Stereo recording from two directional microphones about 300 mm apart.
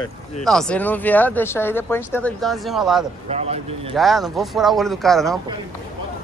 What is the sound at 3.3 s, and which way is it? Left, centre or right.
Speech, right.